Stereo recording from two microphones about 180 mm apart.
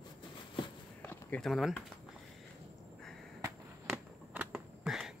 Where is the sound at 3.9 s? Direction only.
10° right (ahead or behind).